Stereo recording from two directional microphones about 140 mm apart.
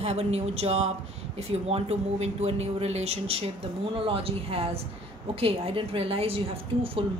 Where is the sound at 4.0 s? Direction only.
40° right (ahead or behind).